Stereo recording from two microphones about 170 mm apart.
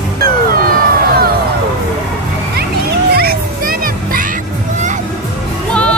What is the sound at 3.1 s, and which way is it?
Children playing, 60° right (ahead or behind).